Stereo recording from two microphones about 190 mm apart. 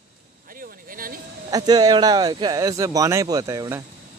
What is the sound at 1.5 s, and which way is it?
Speech, 20° right (ahead or behind).